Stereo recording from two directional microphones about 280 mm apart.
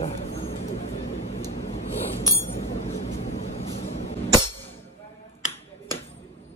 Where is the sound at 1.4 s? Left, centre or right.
Left.